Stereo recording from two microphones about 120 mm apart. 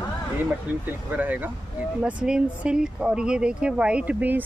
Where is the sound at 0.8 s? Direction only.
15° right (ahead or behind).